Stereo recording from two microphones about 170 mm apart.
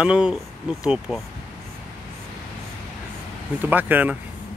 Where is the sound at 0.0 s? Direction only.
5° right (ahead or behind).